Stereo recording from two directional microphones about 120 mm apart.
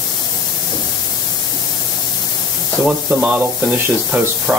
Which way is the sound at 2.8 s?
5° right (ahead or behind).